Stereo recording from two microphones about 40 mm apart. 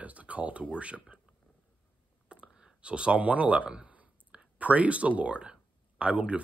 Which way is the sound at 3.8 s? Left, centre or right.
Right.